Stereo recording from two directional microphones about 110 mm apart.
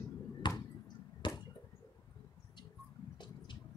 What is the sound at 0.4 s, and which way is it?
Basketball bounce, 45° left (ahead or behind).